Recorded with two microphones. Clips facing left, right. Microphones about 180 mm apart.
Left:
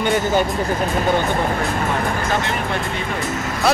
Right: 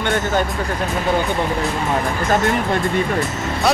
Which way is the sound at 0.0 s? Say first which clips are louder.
Left 2 dB; 10° left (ahead or behind).